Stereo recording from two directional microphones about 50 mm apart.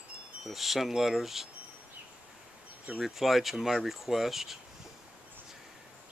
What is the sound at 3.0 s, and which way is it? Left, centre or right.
Speech, centre.